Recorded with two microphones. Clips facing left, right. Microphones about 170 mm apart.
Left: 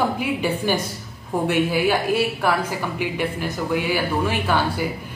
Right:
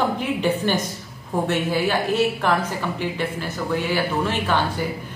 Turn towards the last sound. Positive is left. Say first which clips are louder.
# left 1 dB
turn(degrees=10)  # may be behind; listen again after turning